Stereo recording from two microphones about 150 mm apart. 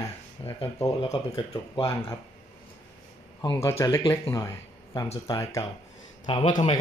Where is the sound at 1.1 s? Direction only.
30° left (ahead or behind).